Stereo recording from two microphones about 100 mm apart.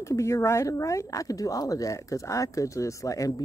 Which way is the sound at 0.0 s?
30° left (ahead or behind).